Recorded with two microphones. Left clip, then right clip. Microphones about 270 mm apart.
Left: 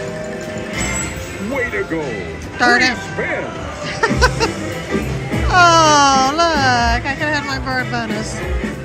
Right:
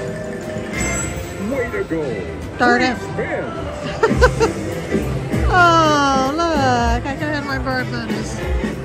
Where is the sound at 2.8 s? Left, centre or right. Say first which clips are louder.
Left 3 dB; centre.